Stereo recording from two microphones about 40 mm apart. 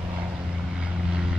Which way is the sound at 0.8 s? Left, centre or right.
Centre.